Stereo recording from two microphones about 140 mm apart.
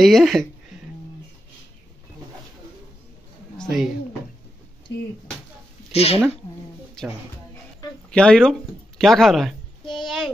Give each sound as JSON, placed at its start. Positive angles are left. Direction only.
{"t": 0.0, "sound": "speech", "side_deg": 0}
{"t": 3.5, "sound": "a sound", "side_deg": -5}
{"t": 5.9, "sound": "speech", "side_deg": 45}
{"t": 8.1, "sound": "speech", "side_deg": 5}